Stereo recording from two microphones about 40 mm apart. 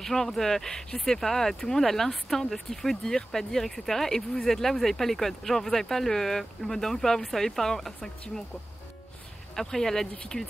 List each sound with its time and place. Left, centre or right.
0.0 s speech: centre
9.6 s speech: centre